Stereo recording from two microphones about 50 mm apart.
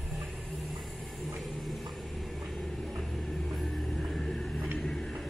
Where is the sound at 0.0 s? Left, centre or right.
Centre.